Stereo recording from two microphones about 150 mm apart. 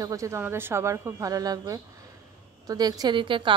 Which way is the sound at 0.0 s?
20° right (ahead or behind).